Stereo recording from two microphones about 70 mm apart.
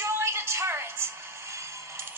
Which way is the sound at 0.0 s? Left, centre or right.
Right.